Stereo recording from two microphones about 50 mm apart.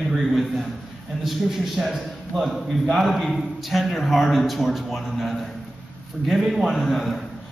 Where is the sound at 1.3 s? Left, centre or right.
Centre.